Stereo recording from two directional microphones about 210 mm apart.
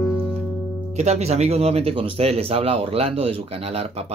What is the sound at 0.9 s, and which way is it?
Speech, 30° right (ahead or behind).